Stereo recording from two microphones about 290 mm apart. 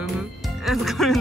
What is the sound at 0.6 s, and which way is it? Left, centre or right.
Speech, centre.